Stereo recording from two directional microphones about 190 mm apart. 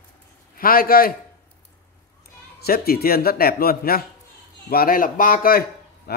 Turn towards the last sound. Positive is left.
turn(degrees=55)  # may be behind; listen again after turning